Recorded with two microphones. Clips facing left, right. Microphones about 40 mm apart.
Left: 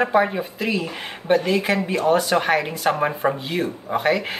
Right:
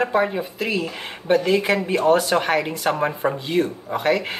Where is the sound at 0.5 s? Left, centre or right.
Centre.